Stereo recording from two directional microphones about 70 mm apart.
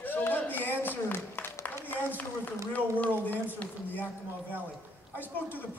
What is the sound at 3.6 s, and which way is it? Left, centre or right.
Speech, left.